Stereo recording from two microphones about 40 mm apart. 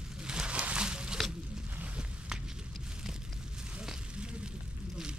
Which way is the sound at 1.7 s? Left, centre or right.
Right.